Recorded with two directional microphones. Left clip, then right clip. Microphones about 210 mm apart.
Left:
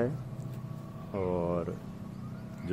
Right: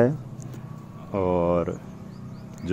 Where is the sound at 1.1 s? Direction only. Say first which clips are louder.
Right 9 dB; 45° right (ahead or behind).